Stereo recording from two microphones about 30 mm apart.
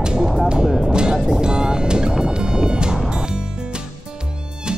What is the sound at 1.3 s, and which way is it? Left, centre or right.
Music, right.